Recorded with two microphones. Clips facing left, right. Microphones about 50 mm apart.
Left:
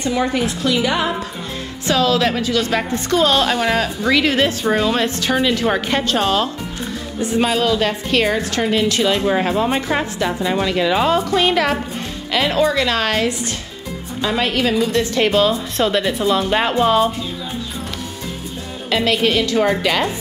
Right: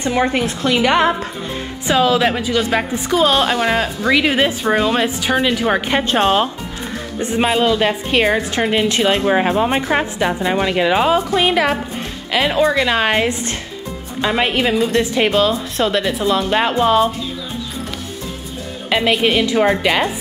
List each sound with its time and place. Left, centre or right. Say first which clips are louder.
0.0 s a woman's voice: right 2 dB; right
1.9 s a woman's voice: right 2 dB; centre
7.4 s a woman's voice: right 4 dB; centre
15.3 s speech: even; centre
18.9 s a woman's voice: right 1 dB; centre